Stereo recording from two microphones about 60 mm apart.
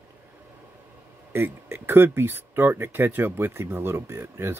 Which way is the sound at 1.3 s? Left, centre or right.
Right.